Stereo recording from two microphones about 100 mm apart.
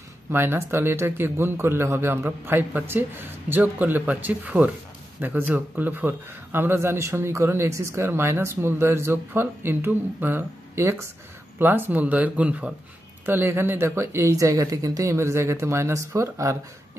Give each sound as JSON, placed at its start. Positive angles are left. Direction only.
{"t": 0.3, "sound": "speech", "side_deg": -25}